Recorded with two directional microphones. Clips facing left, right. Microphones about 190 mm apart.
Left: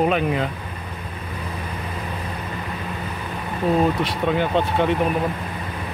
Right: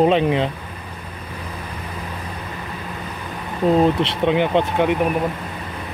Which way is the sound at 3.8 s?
25° right (ahead or behind).